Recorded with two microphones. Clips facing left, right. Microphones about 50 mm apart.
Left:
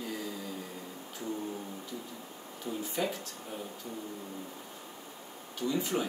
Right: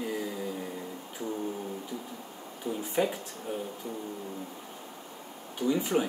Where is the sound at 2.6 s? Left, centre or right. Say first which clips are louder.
Right 4 dB; centre.